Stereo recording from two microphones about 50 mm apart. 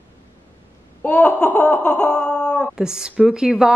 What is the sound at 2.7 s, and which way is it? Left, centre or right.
Speech, centre.